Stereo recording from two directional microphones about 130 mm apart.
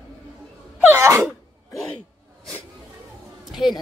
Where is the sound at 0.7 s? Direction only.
15° right (ahead or behind).